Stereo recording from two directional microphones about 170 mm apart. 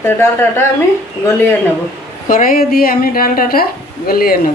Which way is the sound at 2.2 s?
55° left (ahead or behind).